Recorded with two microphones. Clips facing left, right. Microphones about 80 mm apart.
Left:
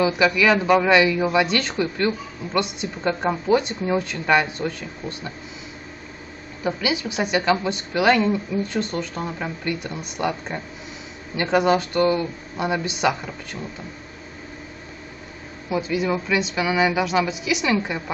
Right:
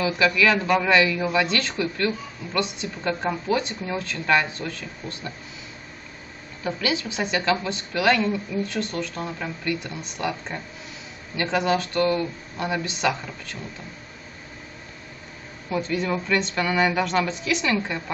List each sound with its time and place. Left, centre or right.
0.0 s a man's voice: centre
6.6 s a man's voice: centre
15.7 s a man's voice: centre